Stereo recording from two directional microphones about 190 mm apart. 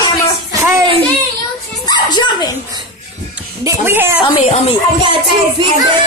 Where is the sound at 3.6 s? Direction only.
10° right (ahead or behind).